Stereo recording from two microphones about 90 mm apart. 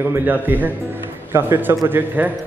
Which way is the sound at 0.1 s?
20° right (ahead or behind).